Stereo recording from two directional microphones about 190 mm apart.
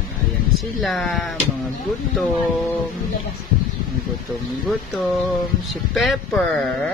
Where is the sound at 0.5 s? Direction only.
5° left (ahead or behind).